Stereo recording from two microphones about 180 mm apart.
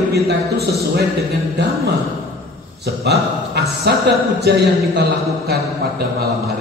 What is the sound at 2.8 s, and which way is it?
Speech, 65° right (ahead or behind).